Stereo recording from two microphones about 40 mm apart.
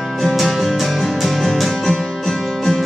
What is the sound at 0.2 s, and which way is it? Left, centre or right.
Music, centre.